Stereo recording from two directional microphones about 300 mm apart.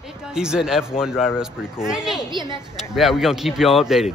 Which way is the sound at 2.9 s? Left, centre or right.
Centre.